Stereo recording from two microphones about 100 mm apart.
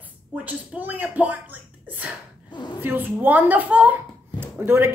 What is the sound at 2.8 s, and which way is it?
A woman's voice, 20° right (ahead or behind).